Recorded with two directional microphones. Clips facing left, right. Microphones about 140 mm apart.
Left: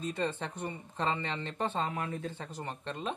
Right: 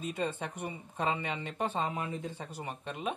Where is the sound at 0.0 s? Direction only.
10° right (ahead or behind).